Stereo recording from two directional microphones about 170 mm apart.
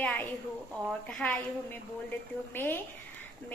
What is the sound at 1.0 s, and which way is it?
A woman's voice, 10° left (ahead or behind).